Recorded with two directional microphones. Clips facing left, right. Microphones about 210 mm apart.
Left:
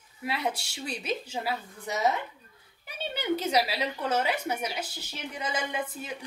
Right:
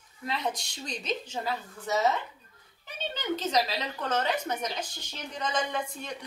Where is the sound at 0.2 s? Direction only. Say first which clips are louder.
Left 1 dB; 10° left (ahead or behind).